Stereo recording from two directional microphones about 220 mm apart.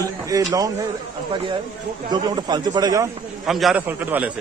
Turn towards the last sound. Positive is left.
turn(degrees=-5)  # may be behind; listen again after turning